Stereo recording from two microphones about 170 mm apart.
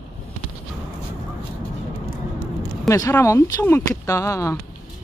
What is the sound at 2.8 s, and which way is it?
Speech, 20° left (ahead or behind).